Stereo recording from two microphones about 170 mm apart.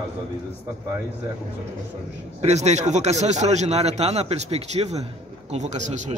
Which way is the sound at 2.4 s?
40° right (ahead or behind).